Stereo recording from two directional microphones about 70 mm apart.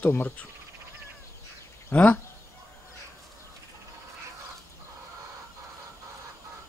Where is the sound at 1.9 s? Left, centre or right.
Left.